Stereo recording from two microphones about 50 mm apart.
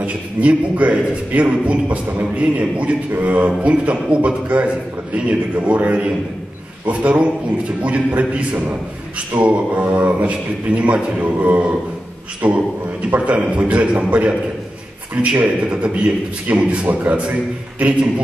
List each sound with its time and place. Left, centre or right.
0.0 s a man's voice: right